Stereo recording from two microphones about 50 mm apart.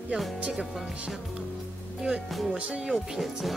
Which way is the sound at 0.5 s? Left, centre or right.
Centre.